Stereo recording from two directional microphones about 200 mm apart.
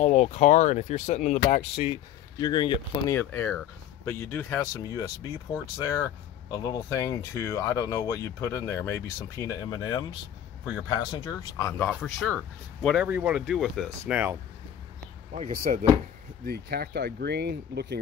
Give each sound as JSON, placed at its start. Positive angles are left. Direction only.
{"t": 0.0, "sound": "speech", "side_deg": 35}
{"t": 2.3, "sound": "speech", "side_deg": 20}
{"t": 3.2, "sound": "speech", "side_deg": 10}
{"t": 11.9, "sound": "speech", "side_deg": 5}
{"t": 15.3, "sound": "speech", "side_deg": -40}